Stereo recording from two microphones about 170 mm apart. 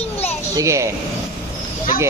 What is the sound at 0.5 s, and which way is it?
Speech, 15° right (ahead or behind).